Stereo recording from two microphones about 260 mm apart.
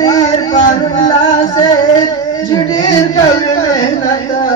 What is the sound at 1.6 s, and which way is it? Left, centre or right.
Music, centre.